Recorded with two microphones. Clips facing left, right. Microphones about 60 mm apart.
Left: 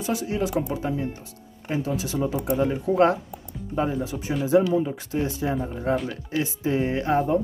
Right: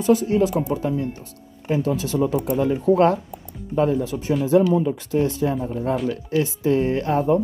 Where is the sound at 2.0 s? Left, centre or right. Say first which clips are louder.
Right 4 dB; left.